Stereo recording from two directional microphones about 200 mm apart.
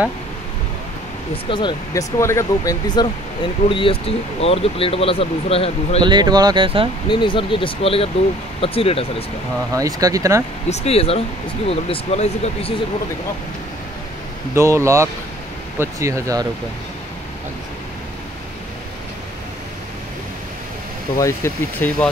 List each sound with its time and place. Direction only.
1.5 s speech: 25° left (ahead or behind)
6.0 s speech: 20° right (ahead or behind)
7.1 s speech: 25° left (ahead or behind)
9.8 s speech: 15° right (ahead or behind)
10.7 s speech: 30° left (ahead or behind)
14.5 s speech: 15° right (ahead or behind)
21.2 s speech: 15° left (ahead or behind)